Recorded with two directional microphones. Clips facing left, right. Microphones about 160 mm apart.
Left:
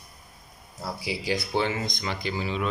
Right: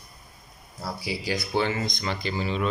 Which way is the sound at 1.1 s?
20° left (ahead or behind).